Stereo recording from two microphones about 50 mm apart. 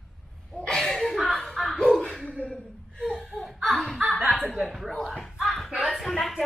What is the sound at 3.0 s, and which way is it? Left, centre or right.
Laughter, centre.